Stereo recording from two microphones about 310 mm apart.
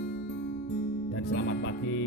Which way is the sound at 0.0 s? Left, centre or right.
Left.